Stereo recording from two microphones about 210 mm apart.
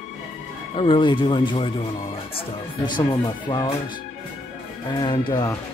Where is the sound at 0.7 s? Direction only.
25° left (ahead or behind).